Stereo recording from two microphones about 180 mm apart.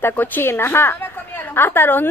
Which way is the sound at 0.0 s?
10° left (ahead or behind).